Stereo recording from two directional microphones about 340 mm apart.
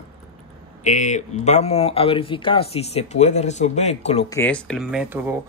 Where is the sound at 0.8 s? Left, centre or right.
Left.